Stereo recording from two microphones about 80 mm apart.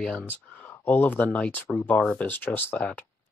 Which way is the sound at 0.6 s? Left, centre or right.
Left.